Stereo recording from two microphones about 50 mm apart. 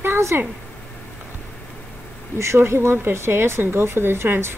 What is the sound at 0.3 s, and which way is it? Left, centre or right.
Speech, right.